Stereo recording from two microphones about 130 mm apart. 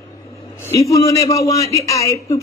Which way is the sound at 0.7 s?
25° left (ahead or behind).